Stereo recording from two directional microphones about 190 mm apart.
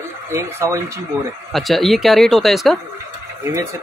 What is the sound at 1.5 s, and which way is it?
Speech, centre (ahead or behind).